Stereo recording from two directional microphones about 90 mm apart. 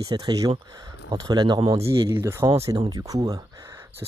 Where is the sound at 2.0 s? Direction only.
25° right (ahead or behind).